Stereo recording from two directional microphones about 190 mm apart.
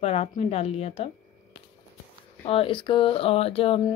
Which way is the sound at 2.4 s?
30° left (ahead or behind).